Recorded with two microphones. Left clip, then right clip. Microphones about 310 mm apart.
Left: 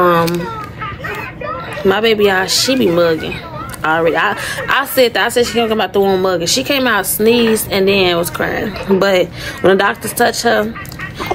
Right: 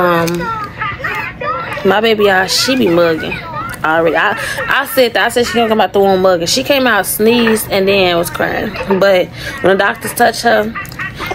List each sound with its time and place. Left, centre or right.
0.0 s children playing: centre
1.8 s speech: centre